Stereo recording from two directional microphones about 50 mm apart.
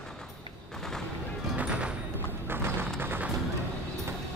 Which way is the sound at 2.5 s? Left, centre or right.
Right.